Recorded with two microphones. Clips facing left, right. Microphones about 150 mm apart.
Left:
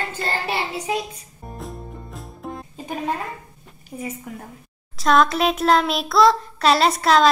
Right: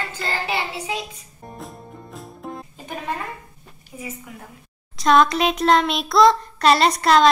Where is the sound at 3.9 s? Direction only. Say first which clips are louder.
Left 5 dB; 35° left (ahead or behind).